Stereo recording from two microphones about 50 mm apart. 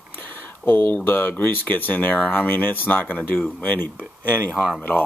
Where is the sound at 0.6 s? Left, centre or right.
Left.